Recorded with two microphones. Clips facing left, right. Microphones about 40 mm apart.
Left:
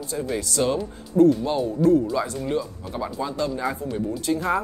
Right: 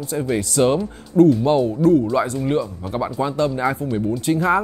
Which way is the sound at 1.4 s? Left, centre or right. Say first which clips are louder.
Right 7 dB; right.